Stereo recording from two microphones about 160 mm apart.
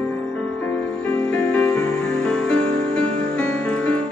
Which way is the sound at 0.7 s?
10° left (ahead or behind).